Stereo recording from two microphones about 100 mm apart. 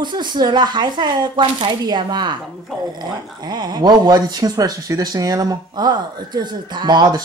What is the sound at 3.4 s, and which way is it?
Speech, 45° right (ahead or behind).